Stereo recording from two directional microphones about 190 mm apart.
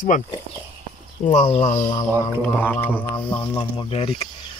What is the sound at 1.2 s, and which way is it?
Speech, 30° left (ahead or behind).